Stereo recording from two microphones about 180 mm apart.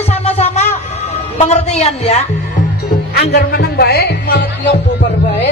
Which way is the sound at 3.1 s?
65° left (ahead or behind).